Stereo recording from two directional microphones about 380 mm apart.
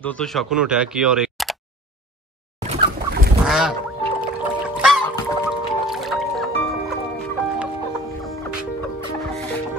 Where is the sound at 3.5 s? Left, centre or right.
Centre.